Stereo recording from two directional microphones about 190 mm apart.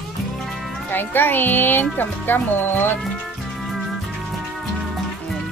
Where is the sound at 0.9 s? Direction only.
10° left (ahead or behind).